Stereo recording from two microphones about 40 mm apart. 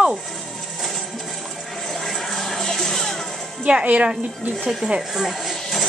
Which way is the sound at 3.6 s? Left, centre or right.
Right.